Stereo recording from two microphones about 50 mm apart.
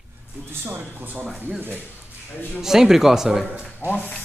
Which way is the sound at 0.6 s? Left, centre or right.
Right.